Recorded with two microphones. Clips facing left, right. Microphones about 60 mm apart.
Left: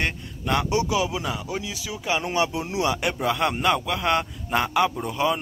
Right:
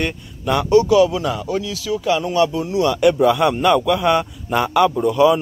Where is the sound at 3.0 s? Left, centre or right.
Centre.